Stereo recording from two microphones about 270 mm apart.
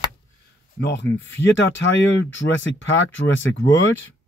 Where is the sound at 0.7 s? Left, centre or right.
Left.